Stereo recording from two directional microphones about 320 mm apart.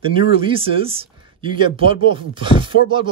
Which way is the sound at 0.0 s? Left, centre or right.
Centre.